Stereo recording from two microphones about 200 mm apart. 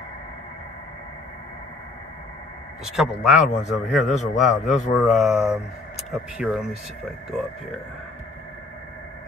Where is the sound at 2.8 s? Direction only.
Centre (ahead or behind).